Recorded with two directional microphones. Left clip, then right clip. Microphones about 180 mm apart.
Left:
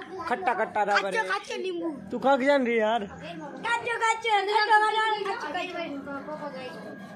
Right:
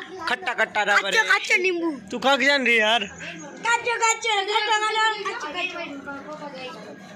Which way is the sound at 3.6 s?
35° right (ahead or behind).